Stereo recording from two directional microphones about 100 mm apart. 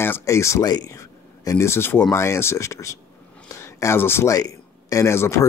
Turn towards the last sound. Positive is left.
turn(degrees=30)  # may be behind; listen again after turning